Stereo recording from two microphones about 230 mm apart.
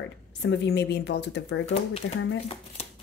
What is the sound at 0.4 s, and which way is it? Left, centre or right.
Speech, left.